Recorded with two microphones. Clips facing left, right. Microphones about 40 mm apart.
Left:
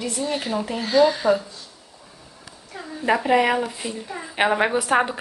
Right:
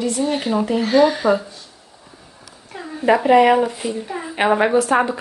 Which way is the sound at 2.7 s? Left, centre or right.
Right.